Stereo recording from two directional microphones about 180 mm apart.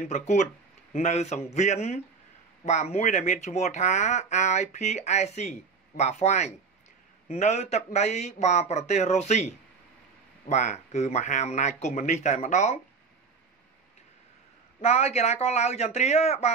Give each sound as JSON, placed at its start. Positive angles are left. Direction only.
{"t": 0.0, "sound": "speech", "side_deg": 40}
{"t": 14.8, "sound": "speech", "side_deg": 35}